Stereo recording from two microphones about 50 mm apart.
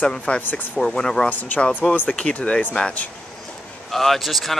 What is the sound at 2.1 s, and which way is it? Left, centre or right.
Speech, left.